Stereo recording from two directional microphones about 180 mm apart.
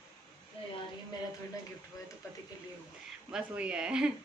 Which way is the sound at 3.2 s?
5° right (ahead or behind).